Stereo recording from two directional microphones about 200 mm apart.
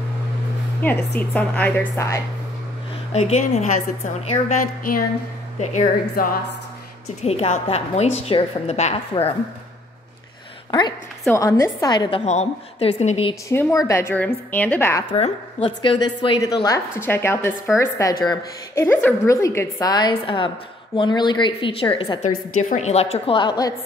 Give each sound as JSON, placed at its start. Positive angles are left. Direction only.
{"t": 0.8, "sound": "a woman's voice", "side_deg": 10}
{"t": 3.1, "sound": "a woman's voice", "side_deg": 35}
{"t": 7.2, "sound": "a woman's voice", "side_deg": 30}
{"t": 10.7, "sound": "a woman's voice", "side_deg": 20}
{"t": 12.3, "sound": "a woman's voice", "side_deg": 30}
{"t": 13.5, "sound": "a woman's voice", "side_deg": 15}
{"t": 15.1, "sound": "a woman's voice", "side_deg": 30}
{"t": 18.9, "sound": "a woman's voice", "side_deg": 10}
{"t": 22.6, "sound": "a woman's voice", "side_deg": 35}